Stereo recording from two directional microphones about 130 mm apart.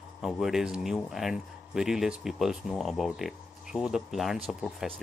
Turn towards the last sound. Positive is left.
turn(degrees=5)  # may be behind; listen again after turning